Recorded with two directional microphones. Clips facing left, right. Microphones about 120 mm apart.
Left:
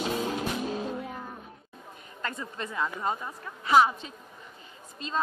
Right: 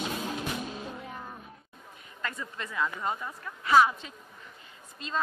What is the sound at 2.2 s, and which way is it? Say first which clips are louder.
A woman's voice: left 2 dB; 30° left (ahead or behind).